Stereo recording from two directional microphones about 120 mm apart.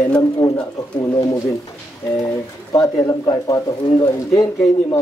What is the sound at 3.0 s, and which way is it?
Speech, 35° left (ahead or behind).